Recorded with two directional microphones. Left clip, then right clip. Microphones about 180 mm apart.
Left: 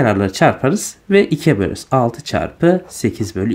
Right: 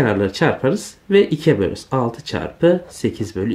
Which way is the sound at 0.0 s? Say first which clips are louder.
Left 4 dB; 40° left (ahead or behind).